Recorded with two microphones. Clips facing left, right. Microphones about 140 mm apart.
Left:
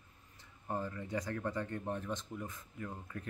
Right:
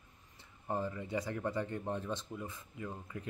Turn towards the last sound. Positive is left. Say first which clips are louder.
# right 1 dB
turn(degrees=-10)  # may be behind; listen again after turning